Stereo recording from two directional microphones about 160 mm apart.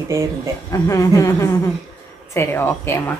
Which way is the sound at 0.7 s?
20° left (ahead or behind).